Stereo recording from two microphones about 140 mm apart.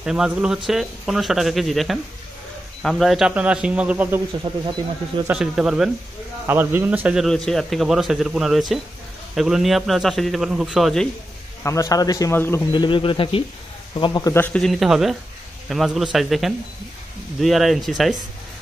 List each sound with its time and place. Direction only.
0.0 s a man's voice: 5° right (ahead or behind)
4.5 s speech: 30° right (ahead or behind)
5.4 s a man's voice: 5° right (ahead or behind)
6.4 s speech: 15° right (ahead or behind)
7.2 s a man's voice: 5° left (ahead or behind)
11.6 s a man's voice: 20° left (ahead or behind)
12.7 s speech: 35° left (ahead or behind)
14.3 s a man's voice: 10° left (ahead or behind)